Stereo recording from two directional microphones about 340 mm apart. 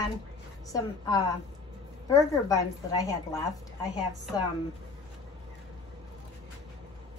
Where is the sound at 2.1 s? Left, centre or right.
Centre.